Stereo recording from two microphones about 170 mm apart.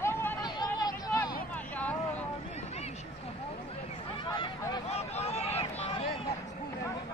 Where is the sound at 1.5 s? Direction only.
10° left (ahead or behind).